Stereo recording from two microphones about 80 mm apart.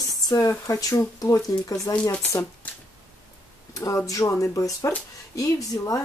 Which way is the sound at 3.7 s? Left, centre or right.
Left.